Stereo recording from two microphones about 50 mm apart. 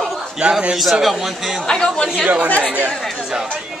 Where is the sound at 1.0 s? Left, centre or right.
Centre.